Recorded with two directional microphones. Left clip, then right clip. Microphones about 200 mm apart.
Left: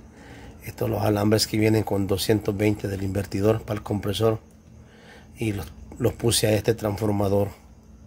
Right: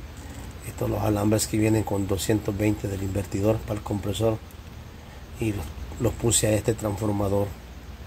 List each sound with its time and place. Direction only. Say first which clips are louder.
0.7 s speech: left 2 dB; 20° left (ahead or behind)
1.9 s speech: left 2 dB; 30° left (ahead or behind)
2.1 s speech: left 4 dB; 15° left (ahead or behind)
6.0 s speech: left 2 dB; 15° left (ahead or behind)